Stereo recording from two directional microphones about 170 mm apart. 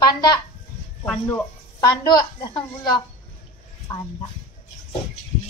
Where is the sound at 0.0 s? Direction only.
25° left (ahead or behind).